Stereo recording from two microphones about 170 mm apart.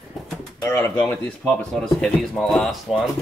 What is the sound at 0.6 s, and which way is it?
Speech, 15° left (ahead or behind).